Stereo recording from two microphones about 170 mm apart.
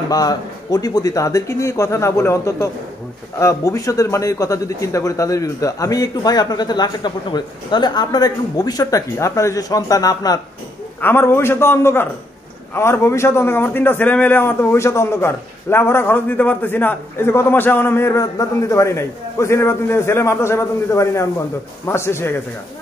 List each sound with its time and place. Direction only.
0.1 s a man's voice: 20° left (ahead or behind)